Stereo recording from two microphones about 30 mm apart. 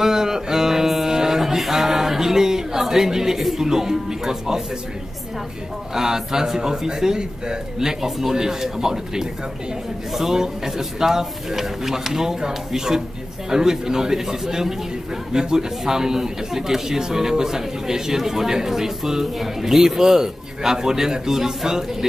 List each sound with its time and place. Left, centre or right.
0.0 s music: centre
1.1 s a sound: centre
3.5 s speech: centre
5.9 s speech: centre
10.3 s speech: centre